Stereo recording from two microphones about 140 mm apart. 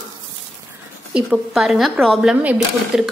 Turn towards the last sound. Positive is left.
turn(degrees=-5)  # may be behind; listen again after turning